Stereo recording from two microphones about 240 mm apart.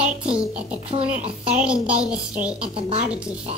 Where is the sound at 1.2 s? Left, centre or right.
Right.